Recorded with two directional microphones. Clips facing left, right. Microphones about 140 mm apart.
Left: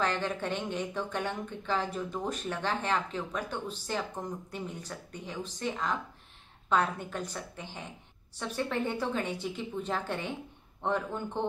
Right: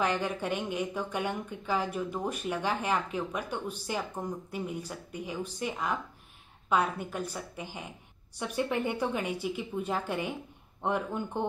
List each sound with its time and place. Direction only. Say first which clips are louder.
0.0 s speech: right 1 dB; 10° right (ahead or behind)